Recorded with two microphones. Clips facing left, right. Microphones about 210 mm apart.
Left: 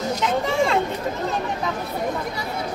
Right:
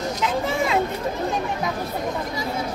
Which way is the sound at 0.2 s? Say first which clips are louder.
Left 2 dB; centre (ahead or behind).